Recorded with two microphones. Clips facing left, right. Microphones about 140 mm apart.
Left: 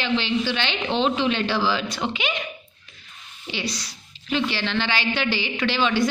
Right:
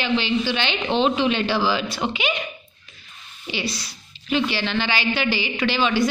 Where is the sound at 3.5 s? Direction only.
10° right (ahead or behind).